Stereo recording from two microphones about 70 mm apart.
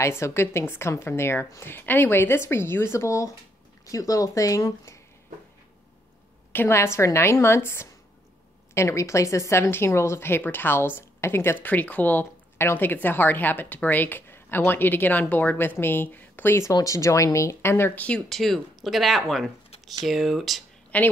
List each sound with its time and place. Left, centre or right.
0.2 s speech: left
6.7 s speech: left
11.6 s a woman's voice: left
16.8 s speech: left
17.9 s a woman's voice: centre
18.3 s speech: centre
20.9 s a woman's voice: left